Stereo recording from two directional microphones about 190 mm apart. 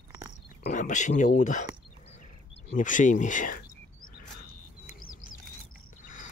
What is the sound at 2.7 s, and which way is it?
Speech, 45° left (ahead or behind).